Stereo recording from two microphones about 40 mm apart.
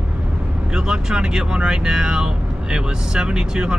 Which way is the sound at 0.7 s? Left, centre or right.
Centre.